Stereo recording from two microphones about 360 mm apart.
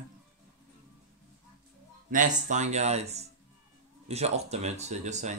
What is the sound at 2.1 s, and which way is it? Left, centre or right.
Speech, right.